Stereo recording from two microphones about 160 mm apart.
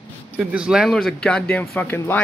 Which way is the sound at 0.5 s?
5° right (ahead or behind).